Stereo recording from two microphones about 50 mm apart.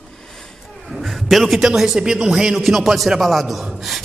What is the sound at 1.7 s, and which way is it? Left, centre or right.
A man's voice, centre.